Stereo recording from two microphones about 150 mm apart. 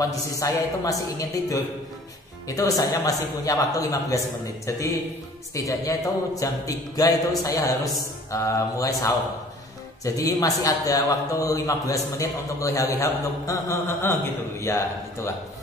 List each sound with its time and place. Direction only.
0.1 s a man's voice: 20° left (ahead or behind)